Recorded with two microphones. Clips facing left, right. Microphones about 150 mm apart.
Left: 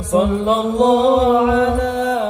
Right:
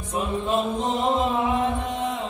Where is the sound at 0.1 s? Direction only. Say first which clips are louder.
Left 9 dB; 90° left.